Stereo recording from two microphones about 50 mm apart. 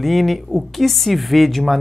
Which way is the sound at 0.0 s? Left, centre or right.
Centre.